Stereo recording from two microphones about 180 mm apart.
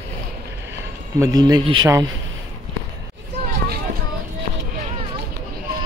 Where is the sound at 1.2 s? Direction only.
20° right (ahead or behind).